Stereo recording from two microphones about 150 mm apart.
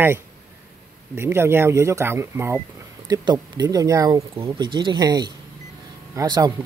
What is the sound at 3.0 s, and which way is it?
Speech, 30° right (ahead or behind).